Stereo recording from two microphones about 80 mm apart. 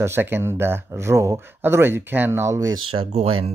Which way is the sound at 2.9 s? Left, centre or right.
Right.